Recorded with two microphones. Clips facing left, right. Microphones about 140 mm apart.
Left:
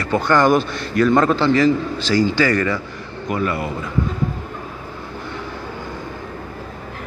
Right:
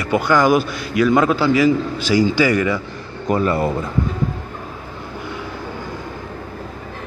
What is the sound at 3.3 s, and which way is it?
Speech, 35° right (ahead or behind).